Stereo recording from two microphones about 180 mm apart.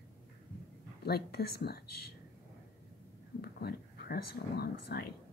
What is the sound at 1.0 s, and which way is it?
Speech, 60° left (ahead or behind).